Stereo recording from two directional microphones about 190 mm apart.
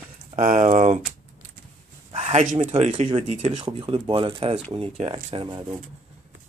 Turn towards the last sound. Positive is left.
turn(degrees=-25)  # may be behind; listen again after turning